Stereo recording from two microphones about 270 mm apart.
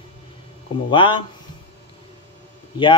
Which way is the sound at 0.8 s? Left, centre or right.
Centre.